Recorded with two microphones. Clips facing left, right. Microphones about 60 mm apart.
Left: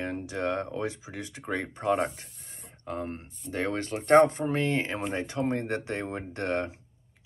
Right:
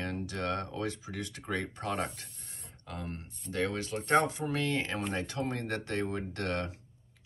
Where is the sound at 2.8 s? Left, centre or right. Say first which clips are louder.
Left 7 dB; left.